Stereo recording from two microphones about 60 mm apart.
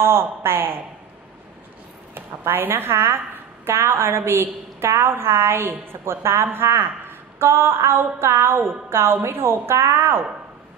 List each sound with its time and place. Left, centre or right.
0.0 s a woman's voice: right
2.1 s a woman's voice: right